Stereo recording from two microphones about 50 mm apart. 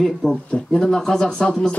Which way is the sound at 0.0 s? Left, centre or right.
Centre.